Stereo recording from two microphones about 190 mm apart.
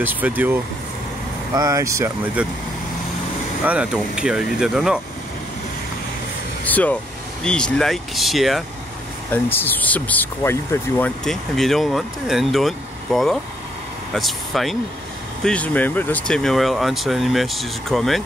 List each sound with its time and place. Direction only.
0.0 s speech: 10° right (ahead or behind)
3.6 s speech: 5° right (ahead or behind)
6.6 s speech: 10° left (ahead or behind)
9.3 s speech: 10° left (ahead or behind)
11.2 s speech: centre (ahead or behind)